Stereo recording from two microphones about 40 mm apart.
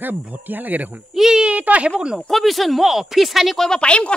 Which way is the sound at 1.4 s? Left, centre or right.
Right.